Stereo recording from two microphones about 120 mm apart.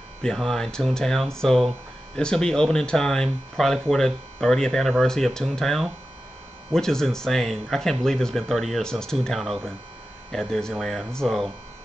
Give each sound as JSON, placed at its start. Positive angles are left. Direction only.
{"t": 0.2, "sound": "speech", "side_deg": 5}